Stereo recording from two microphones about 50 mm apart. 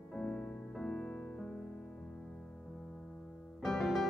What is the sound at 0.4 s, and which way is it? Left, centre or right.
Music, left.